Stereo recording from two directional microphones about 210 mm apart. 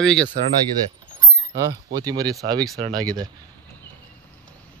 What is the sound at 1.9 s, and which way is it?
Speech, 20° right (ahead or behind).